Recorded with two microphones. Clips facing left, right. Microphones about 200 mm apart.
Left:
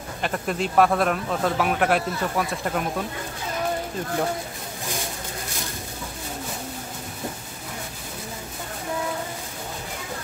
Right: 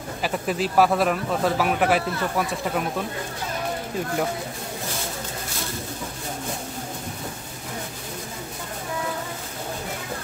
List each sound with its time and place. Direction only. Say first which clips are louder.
0.2 s speech: right 1 dB; 5° right (ahead or behind)